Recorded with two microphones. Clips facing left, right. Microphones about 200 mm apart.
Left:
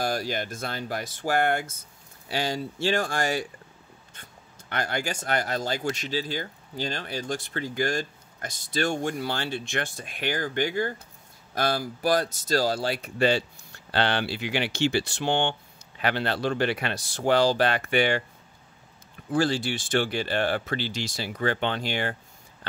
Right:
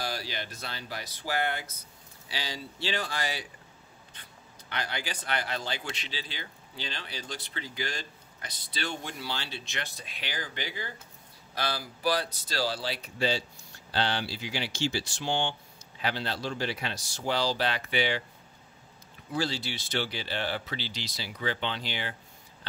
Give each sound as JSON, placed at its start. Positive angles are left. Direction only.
{"t": 0.0, "sound": "speech", "side_deg": 50}
{"t": 19.3, "sound": "speech", "side_deg": 50}